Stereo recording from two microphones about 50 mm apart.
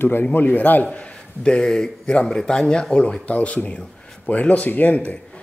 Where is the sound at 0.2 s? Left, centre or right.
Left.